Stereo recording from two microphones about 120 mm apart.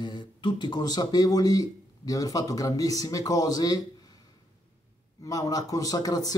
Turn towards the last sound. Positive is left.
turn(degrees=30)  # may be behind; listen again after turning